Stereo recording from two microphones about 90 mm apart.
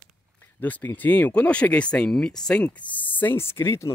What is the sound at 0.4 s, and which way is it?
Speech, 20° left (ahead or behind).